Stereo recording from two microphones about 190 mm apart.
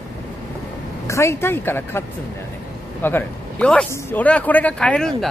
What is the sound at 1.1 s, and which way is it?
Speech, 15° left (ahead or behind).